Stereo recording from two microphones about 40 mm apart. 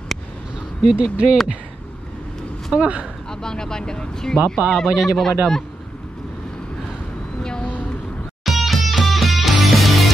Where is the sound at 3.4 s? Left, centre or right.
Centre.